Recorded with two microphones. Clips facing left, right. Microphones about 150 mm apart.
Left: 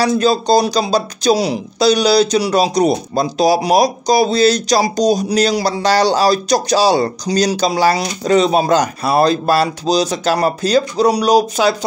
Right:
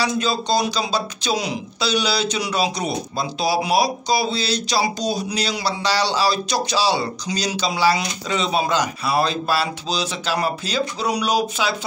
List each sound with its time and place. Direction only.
0.0 s speech: 40° left (ahead or behind)